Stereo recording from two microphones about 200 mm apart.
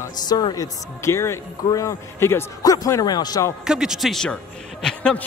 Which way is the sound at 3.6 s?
5° right (ahead or behind).